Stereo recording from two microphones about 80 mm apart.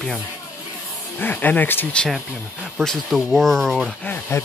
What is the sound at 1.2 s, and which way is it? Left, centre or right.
Speech, left.